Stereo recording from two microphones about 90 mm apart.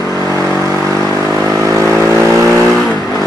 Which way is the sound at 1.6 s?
35° right (ahead or behind).